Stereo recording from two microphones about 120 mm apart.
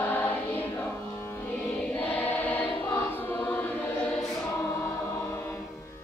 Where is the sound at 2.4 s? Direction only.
15° left (ahead or behind).